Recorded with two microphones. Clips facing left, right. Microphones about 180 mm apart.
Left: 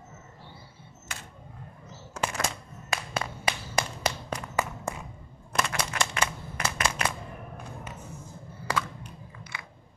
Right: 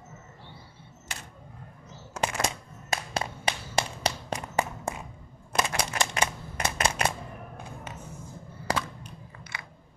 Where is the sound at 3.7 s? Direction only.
30° right (ahead or behind).